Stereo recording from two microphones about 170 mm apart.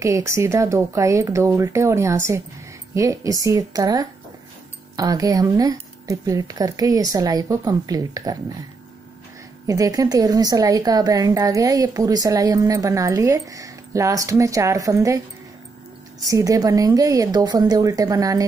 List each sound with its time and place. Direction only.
0.0 s a woman's voice: 15° right (ahead or behind)
9.7 s a woman's voice: 20° right (ahead or behind)
16.3 s a woman's voice: 20° right (ahead or behind)